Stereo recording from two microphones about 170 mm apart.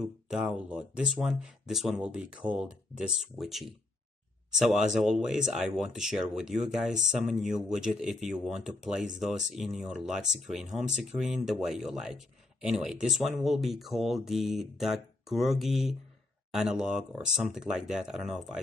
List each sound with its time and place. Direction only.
0.0 s speech: 5° right (ahead or behind)